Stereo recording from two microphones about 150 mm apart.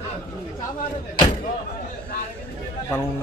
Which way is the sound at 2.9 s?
15° left (ahead or behind).